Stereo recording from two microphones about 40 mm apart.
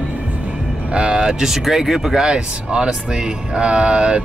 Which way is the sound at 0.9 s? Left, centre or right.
Right.